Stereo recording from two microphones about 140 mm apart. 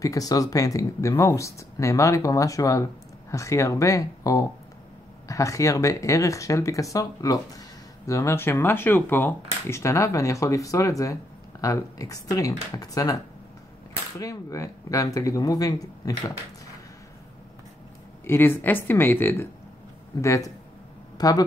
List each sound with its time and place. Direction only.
0.0 s speech: 25° left (ahead or behind)
14.2 s speech: 25° left (ahead or behind)
18.2 s speech: 15° left (ahead or behind)